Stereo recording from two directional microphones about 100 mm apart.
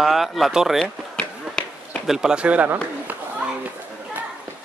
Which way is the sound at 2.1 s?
5° right (ahead or behind).